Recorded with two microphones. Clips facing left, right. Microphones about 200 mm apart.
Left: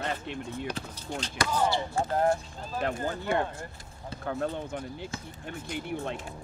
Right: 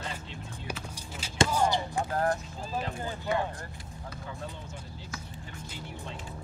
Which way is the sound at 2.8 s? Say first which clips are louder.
Left 5 dB; 60° left (ahead or behind).